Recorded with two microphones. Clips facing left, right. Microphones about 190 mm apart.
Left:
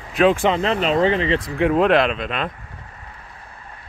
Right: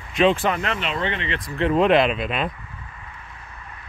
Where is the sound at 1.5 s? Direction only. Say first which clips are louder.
Even; 5° left (ahead or behind).